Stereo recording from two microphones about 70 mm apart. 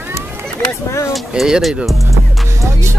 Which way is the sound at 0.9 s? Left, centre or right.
Left.